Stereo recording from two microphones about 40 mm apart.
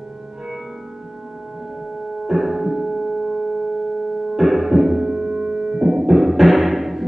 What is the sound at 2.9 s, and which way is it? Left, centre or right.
Music, centre.